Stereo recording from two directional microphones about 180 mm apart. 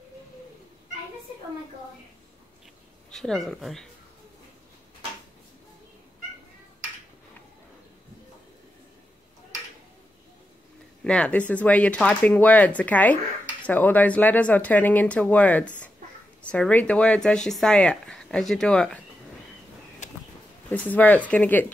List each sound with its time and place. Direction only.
3.1 s speech: centre (ahead or behind)
11.1 s speech: 5° left (ahead or behind)
20.0 s a sound: 45° left (ahead or behind)
20.7 s speech: 10° left (ahead or behind)